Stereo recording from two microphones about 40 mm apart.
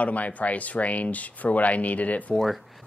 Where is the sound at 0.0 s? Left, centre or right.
Left.